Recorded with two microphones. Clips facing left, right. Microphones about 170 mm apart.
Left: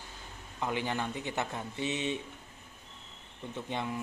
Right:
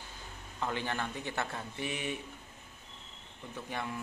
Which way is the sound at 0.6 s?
15° left (ahead or behind).